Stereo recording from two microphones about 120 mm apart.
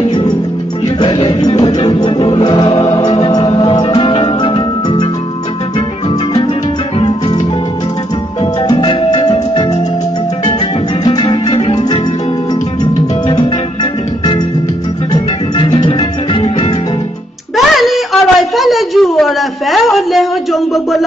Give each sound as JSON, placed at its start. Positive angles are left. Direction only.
{"t": 0.1, "sound": "music", "side_deg": 35}
{"t": 2.8, "sound": "music", "side_deg": 25}
{"t": 7.0, "sound": "music", "side_deg": 40}
{"t": 8.7, "sound": "music", "side_deg": 40}
{"t": 11.1, "sound": "music", "side_deg": 35}
{"t": 15.1, "sound": "music", "side_deg": 35}
{"t": 17.6, "sound": "a sound", "side_deg": 0}